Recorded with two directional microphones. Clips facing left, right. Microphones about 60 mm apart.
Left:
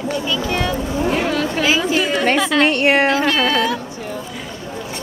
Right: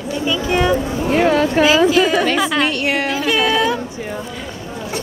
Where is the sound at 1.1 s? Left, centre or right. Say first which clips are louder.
Right 9 dB; right.